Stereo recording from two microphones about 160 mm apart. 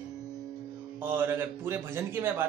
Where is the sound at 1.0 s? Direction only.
15° right (ahead or behind).